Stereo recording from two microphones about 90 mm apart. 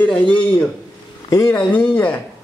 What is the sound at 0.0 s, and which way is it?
Speech, 15° left (ahead or behind).